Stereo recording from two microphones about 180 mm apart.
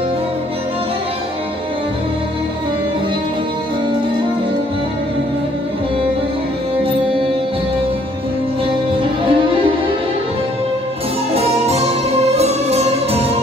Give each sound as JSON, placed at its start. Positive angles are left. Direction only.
{"t": 9.2, "sound": "music", "side_deg": -30}
{"t": 11.3, "sound": "music", "side_deg": -35}